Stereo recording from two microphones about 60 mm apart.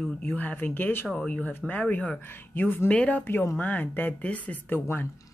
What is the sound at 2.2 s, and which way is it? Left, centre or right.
Speech, left.